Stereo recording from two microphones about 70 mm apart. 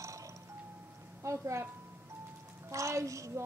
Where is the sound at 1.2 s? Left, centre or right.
Right.